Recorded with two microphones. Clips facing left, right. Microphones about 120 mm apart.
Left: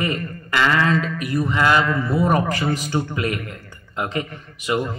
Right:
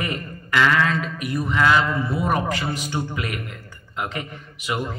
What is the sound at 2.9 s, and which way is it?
Speech, 25° left (ahead or behind).